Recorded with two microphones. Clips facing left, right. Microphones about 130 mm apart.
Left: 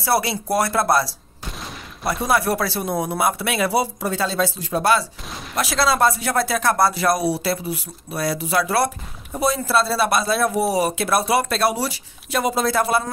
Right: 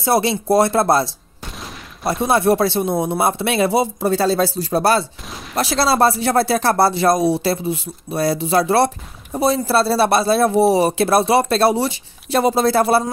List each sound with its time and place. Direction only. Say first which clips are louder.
0.0 s speech: right 4 dB; 25° right (ahead or behind)
2.2 s speech: right 5 dB; 25° right (ahead or behind)
4.1 s speech: right 7 dB; 35° right (ahead or behind)
5.3 s fusillade: right 2 dB; centre (ahead or behind)
5.6 s speech: right 3 dB; 30° right (ahead or behind)